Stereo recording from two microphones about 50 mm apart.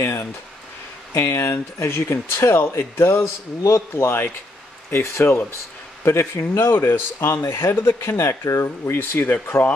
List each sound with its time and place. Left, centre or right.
1.1 s a man's voice: left
8.2 s speech: left